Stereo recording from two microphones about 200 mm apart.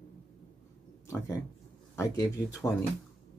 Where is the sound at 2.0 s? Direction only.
15° left (ahead or behind).